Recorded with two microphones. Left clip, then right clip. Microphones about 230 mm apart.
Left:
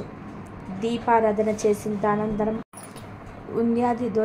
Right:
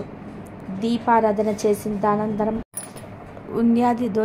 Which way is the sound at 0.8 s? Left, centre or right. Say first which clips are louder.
Right 2 dB; right.